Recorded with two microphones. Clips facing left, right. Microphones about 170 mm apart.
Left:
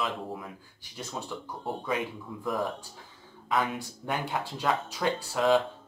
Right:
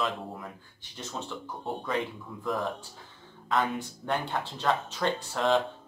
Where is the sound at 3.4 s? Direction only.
5° left (ahead or behind).